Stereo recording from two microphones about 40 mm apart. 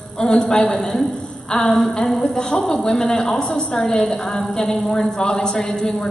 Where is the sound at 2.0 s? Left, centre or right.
Centre.